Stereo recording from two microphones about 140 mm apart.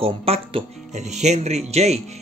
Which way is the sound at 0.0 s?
45° right (ahead or behind).